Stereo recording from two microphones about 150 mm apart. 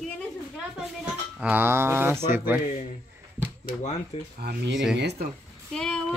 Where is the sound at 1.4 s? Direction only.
10° right (ahead or behind).